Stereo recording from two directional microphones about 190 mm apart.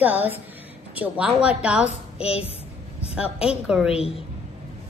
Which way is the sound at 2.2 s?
30° left (ahead or behind).